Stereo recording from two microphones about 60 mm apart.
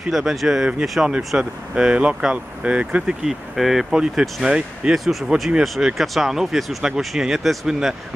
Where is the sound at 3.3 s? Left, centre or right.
Centre.